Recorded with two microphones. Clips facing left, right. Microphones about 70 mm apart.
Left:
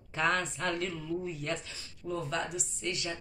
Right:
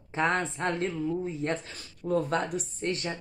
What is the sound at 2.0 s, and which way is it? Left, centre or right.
Speech, right.